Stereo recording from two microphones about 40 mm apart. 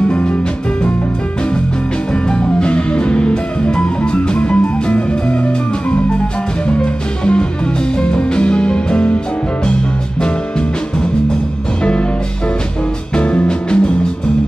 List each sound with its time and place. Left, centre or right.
2.2 s music: left
6.7 s music: left
13.1 s music: left